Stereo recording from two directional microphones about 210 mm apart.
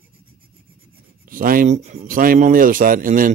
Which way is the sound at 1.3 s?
40° right (ahead or behind).